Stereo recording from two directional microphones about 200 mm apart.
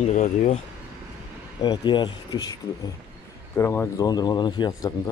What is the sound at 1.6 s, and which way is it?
Speech, 20° left (ahead or behind).